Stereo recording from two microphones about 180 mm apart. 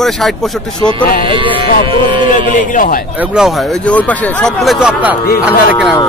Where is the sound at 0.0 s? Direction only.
Centre (ahead or behind).